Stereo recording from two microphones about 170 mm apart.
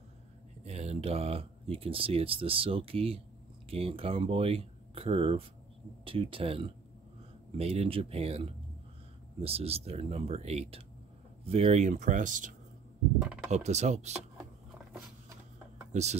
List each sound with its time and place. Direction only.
0.7 s speech: 40° right (ahead or behind)
13.2 s speech: 5° right (ahead or behind)
13.5 s speech: 40° right (ahead or behind)
15.9 s speech: 40° right (ahead or behind)